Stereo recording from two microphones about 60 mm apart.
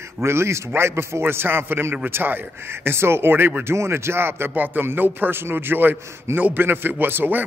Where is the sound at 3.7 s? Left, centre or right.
Right.